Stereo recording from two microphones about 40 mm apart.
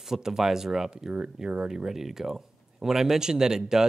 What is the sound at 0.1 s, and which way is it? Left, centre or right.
Speech, centre.